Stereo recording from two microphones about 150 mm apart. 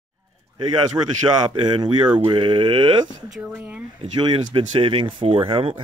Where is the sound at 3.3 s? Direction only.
10° right (ahead or behind).